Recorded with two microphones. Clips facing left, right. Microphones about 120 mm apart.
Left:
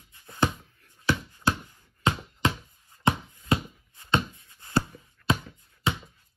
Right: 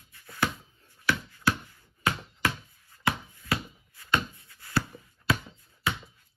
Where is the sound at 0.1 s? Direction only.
25° left (ahead or behind).